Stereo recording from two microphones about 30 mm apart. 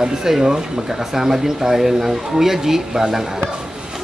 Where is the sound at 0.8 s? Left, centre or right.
Centre.